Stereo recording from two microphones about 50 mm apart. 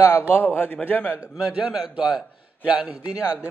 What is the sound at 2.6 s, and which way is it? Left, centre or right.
Speech, right.